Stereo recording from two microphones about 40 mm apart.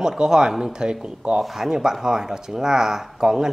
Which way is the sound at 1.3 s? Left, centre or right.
Centre.